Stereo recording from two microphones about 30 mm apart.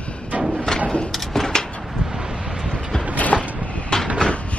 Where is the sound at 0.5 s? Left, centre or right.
Centre.